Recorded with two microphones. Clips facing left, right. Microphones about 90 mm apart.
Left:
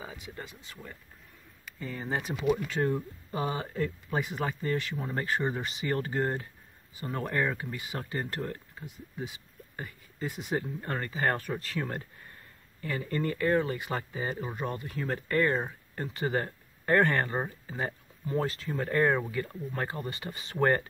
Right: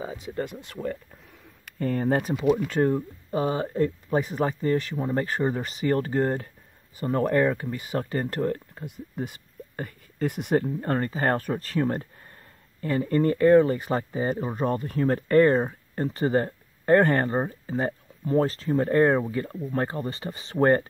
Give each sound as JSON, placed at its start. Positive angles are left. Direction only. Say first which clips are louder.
{"t": 0.0, "sound": "a sound", "louder": "right 8 dB", "side_deg": -35}
{"t": 0.4, "sound": "speech", "louder": "right 13 dB", "side_deg": -60}
{"t": 2.8, "sound": "speech", "louder": "right 6 dB", "side_deg": -30}
{"t": 8.8, "sound": "speech", "louder": "right 6 dB", "side_deg": -55}
{"t": 10.8, "sound": "speech", "louder": "right 6 dB", "side_deg": -35}